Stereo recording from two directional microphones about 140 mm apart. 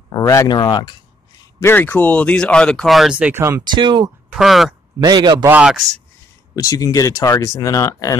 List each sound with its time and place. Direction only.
0.1 s speech: 25° left (ahead or behind)
1.6 s speech: 15° left (ahead or behind); by 3.6 s 20° right (ahead or behind)
3.7 s speech: 30° right (ahead or behind)
4.3 s speech: centre (ahead or behind)
5.0 s a man's voice: 30° right (ahead or behind)
5.5 s speech: 5° right (ahead or behind)
6.5 s speech: 25° left (ahead or behind)